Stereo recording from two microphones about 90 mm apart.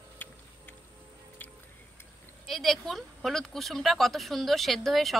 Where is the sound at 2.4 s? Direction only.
5° left (ahead or behind).